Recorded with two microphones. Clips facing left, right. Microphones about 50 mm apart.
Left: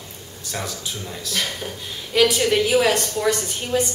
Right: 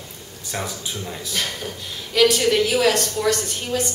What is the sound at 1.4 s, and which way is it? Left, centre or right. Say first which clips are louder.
A woman's voice: even; centre.